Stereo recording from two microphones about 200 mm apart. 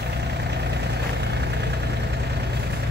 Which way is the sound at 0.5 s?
55° right (ahead or behind).